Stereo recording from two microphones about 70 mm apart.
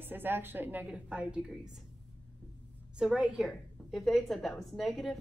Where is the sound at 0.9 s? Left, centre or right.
Centre.